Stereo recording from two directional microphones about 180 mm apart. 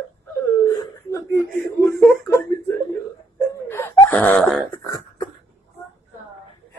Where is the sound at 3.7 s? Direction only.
10° left (ahead or behind).